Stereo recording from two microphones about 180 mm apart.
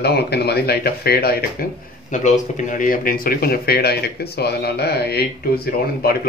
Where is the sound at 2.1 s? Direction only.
45° left (ahead or behind).